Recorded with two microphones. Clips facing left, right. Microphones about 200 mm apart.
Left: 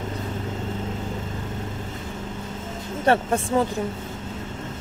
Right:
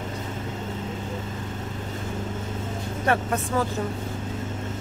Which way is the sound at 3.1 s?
30° left (ahead or behind).